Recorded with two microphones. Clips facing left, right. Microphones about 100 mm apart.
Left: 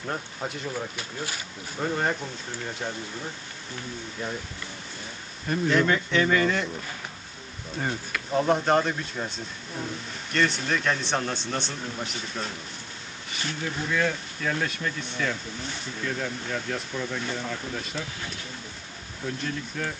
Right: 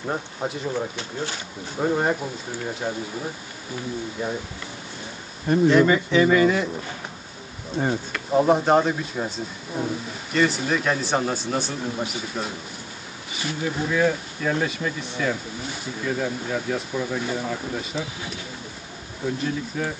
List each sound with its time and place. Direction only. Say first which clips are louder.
0.0 s speech: right 4 dB; 15° right (ahead or behind)
4.2 s speech: right 4 dB; 10° right (ahead or behind)
5.7 s speech: right 4 dB; 5° right (ahead or behind)
7.9 s speech: right 4 dB; 10° right (ahead or behind)
10.3 s speech: right 4 dB; 5° right (ahead or behind)
19.2 s speech: right 6 dB; 5° right (ahead or behind)